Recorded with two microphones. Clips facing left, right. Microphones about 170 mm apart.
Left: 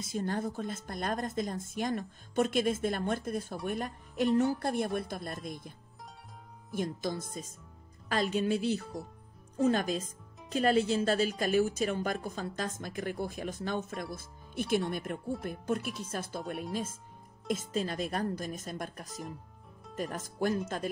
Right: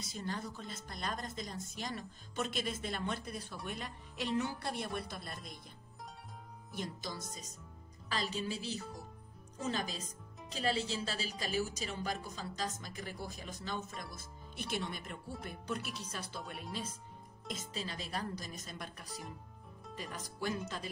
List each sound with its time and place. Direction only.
0.0 s speech: 50° left (ahead or behind)
6.8 s speech: 50° left (ahead or behind)
19.0 s speech: centre (ahead or behind)
20.0 s speech: 50° left (ahead or behind)